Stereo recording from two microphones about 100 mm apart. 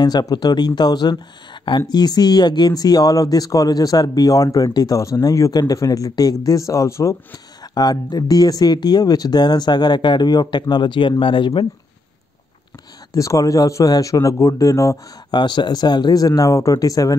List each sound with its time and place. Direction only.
0.0 s speech: 40° left (ahead or behind)
7.7 s speech: 40° left (ahead or behind); by 11.6 s 60° left (ahead or behind)
13.1 s speech: 35° left (ahead or behind)
15.3 s speech: 50° left (ahead or behind)